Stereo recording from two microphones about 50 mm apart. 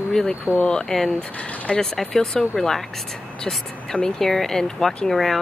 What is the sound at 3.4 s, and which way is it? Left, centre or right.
Speech, centre.